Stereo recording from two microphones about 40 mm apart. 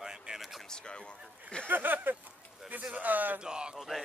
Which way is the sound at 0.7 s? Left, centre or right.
Left.